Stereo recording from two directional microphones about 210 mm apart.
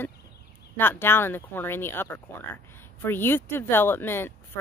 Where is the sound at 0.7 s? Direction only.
10° left (ahead or behind).